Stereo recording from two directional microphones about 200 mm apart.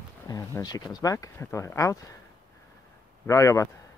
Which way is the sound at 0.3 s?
20° left (ahead or behind).